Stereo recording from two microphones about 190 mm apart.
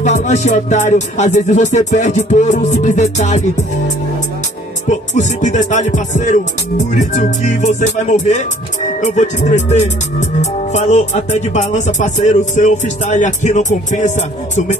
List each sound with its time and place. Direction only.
0.0 s speech: 40° left (ahead or behind)